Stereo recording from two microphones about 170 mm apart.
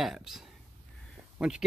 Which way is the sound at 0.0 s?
Centre (ahead or behind).